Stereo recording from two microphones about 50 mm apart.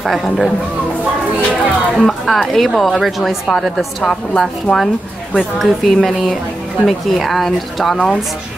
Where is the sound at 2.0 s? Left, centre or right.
Centre.